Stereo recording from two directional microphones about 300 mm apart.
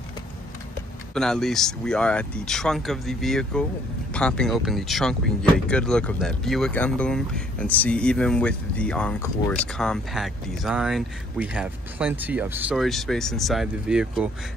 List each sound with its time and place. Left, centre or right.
1.1 s speech: centre